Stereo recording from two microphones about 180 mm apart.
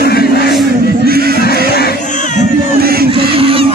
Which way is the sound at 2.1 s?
45° left (ahead or behind).